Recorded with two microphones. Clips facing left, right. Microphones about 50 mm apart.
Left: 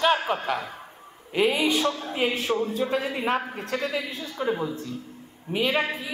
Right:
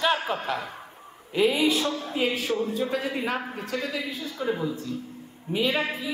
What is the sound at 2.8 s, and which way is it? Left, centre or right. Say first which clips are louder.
A man's voice: left 2 dB; left.